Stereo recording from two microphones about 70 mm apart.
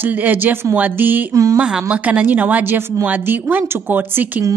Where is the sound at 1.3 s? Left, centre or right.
Right.